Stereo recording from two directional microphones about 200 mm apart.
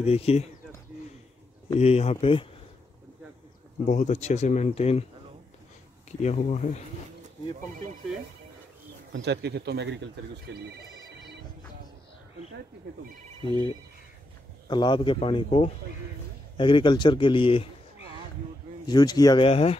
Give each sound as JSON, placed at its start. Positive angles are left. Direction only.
{"t": 0.0, "sound": "speech", "side_deg": 30}
{"t": 1.8, "sound": "speech", "side_deg": 30}
{"t": 3.8, "sound": "speech", "side_deg": 35}
{"t": 6.2, "sound": "speech", "side_deg": 35}
{"t": 9.1, "sound": "speech", "side_deg": -60}
{"t": 14.7, "sound": "a man's voice", "side_deg": 25}
{"t": 18.9, "sound": "a man's voice", "side_deg": 20}